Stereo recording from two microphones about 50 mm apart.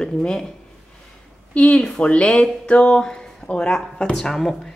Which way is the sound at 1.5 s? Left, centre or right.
Left.